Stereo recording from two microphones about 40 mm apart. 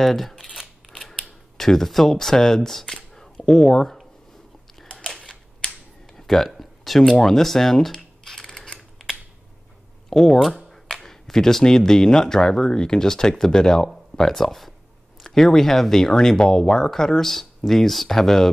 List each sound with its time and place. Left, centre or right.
0.0 s speech: centre
5.2 s a sound: centre
7.2 s typing: centre
8.7 s typing: centre
10.0 s speech: centre